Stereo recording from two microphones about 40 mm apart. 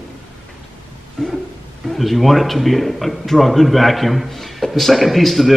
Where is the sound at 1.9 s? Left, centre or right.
Centre.